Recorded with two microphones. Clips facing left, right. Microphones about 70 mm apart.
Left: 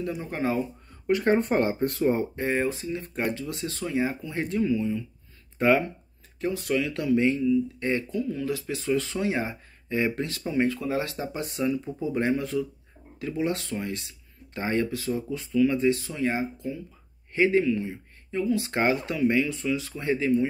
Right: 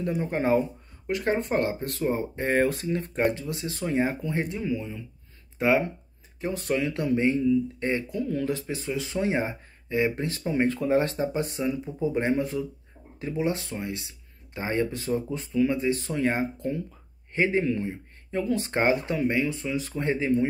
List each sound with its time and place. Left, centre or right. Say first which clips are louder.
0.0 s speech: right 2 dB; right
1.0 s speech: left 4 dB; centre
2.5 s speech: right 5 dB; right
3.3 s speech: right 3 dB; right
4.6 s speech: left 5 dB; centre
6.5 s speech: right 1 dB; right
8.2 s speech: right 1 dB; right; by 9.2 s centre
9.2 s speech: right 1 dB; right
9.9 s speech: right 1 dB; centre
10.2 s speech: right 1 dB; right
15.7 s speech: left 2 dB; right
16.0 s speech: right 2 dB; right
17.3 s speech: left 2 dB; right
18.7 s speech: right 1 dB; right